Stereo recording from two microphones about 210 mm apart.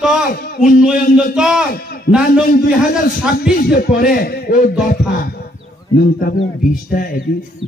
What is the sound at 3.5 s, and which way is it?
A man's voice, 45° left (ahead or behind).